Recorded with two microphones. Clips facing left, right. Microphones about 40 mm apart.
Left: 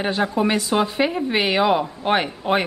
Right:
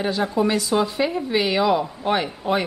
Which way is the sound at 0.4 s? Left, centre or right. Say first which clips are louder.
Right 1 dB; left.